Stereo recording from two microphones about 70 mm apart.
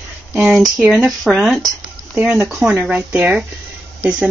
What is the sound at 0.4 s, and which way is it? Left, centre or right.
Speech, centre.